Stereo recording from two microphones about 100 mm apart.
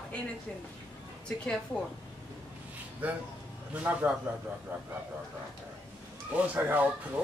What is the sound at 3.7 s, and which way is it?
Speech, 15° right (ahead or behind).